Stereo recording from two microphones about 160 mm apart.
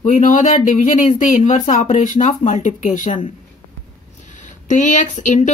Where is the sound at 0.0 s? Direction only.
55° left (ahead or behind).